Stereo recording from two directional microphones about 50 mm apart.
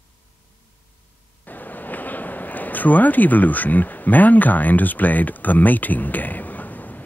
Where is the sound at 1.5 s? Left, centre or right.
Left.